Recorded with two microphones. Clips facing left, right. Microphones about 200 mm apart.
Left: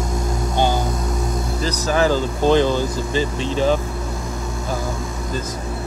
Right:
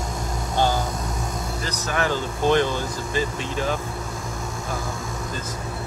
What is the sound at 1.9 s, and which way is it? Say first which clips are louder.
Speech: left 6 dB; 35° left (ahead or behind).